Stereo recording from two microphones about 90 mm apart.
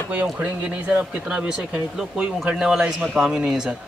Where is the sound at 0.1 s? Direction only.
20° right (ahead or behind).